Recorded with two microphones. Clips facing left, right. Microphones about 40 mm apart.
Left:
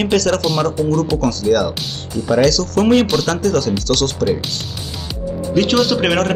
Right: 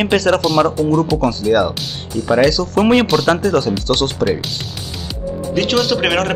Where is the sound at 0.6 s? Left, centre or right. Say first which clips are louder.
Right 2 dB; right.